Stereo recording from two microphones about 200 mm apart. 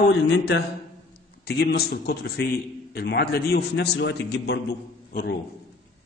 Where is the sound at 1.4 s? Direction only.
55° left (ahead or behind).